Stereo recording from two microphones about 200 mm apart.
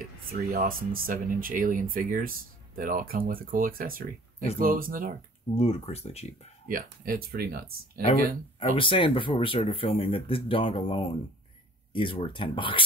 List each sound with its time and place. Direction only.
0.0 s speech: 45° right (ahead or behind)
5.5 s speech: 30° left (ahead or behind)
6.7 s speech: 45° right (ahead or behind)
8.5 s speech: 25° left (ahead or behind)